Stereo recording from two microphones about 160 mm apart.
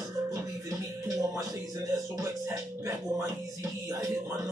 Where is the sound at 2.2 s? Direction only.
20° right (ahead or behind).